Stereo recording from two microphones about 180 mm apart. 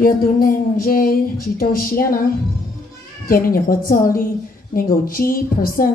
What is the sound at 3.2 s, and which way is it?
A woman's voice, 55° left (ahead or behind).